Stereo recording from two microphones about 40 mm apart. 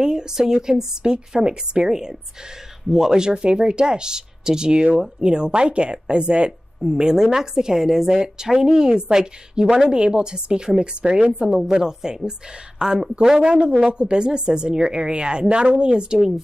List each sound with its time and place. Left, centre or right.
0.0 s a woman's voice: centre
6.8 s a woman's voice: centre
11.4 s a woman's voice: centre